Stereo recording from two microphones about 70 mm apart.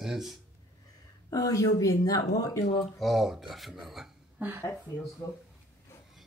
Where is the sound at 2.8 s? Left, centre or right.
Centre.